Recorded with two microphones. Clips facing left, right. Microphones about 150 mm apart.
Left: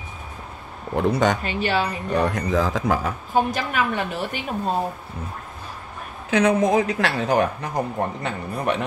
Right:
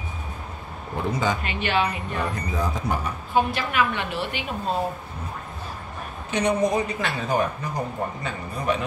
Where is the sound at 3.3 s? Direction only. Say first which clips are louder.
Even; 40° left (ahead or behind).